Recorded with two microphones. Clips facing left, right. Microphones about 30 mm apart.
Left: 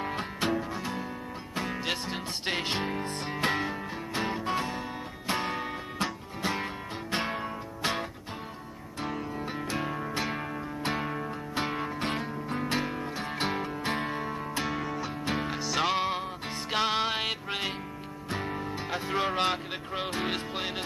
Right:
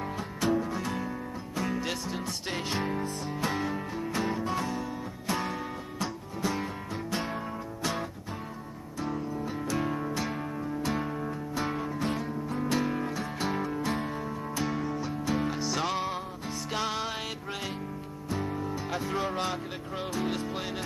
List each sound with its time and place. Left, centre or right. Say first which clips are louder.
0.0 s music: even; left
0.6 s music: right 2 dB; centre
1.5 s music: even; left
3.9 s music: right 1 dB; left
6.4 s guitar: even; left
9.3 s music: right 1 dB; left
9.8 s music: right 1 dB; centre
11.5 s music: left 1 dB; left
13.1 s music: even; left
16.0 s music: left 3 dB; left
19.1 s music: left 6 dB; left
20.5 s music: left 1 dB; left